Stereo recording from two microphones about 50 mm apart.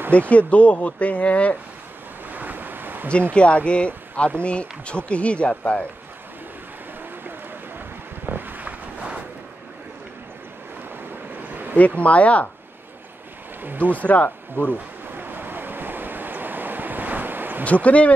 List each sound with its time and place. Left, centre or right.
0.3 s speech: left
2.3 s waves: right
3.3 s speech: left
8.3 s boat: right
11.4 s a sound: right
11.7 s speech: left
13.6 s speech: right
13.9 s speech: left
14.6 s speech: right
15.0 s waves: right
17.8 s speech: left